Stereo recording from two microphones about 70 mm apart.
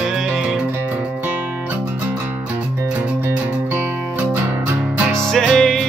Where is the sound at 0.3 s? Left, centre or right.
Centre.